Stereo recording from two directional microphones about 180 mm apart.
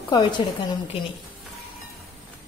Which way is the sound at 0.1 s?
25° left (ahead or behind).